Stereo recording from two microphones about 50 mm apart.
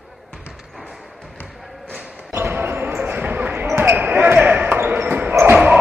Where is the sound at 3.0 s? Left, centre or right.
Right.